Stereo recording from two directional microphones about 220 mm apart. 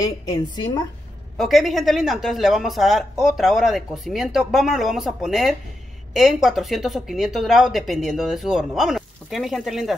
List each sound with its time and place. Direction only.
0.0 s a woman's voice: 15° left (ahead or behind)
1.4 s speech: centre (ahead or behind)